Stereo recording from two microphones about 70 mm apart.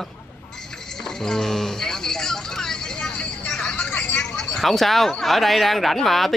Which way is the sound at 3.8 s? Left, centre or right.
Left.